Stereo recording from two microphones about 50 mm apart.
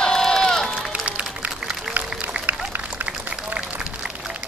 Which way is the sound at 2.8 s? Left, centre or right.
Right.